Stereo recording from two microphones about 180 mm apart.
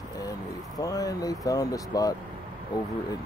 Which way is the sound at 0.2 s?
20° left (ahead or behind).